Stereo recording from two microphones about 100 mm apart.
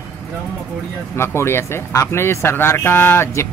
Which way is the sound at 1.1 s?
25° left (ahead or behind).